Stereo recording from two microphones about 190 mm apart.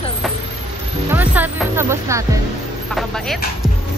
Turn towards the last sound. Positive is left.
turn(degrees=0)  # may be behind; listen again after turning